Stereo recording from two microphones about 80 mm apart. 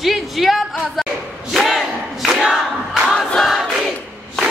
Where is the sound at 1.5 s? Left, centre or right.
Centre.